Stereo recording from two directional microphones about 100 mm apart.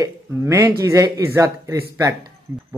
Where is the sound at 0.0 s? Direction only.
30° right (ahead or behind).